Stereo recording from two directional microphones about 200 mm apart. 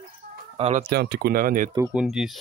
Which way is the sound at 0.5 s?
30° right (ahead or behind).